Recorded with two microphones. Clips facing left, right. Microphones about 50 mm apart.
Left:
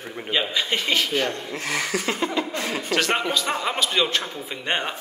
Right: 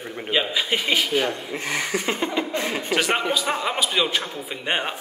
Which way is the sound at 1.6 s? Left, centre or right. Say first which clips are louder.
Left 1 dB; right.